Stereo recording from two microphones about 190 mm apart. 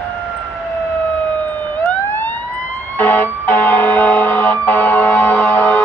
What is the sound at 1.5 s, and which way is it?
Emergency vehicle, 10° left (ahead or behind).